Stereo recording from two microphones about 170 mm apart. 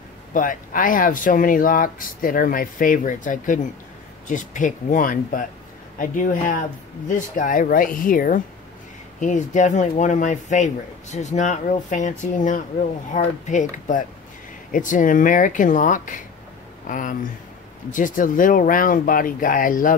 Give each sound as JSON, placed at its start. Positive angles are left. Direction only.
{"t": 0.3, "sound": "speech", "side_deg": 50}